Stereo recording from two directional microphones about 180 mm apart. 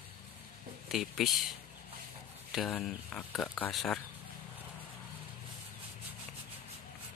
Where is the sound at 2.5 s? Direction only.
Centre (ahead or behind).